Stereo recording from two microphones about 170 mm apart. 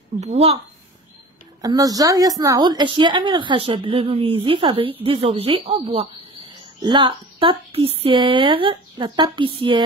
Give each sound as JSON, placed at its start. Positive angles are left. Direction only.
{"t": 0.2, "sound": "speech", "side_deg": -40}
{"t": 1.6, "sound": "a woman's voice", "side_deg": -20}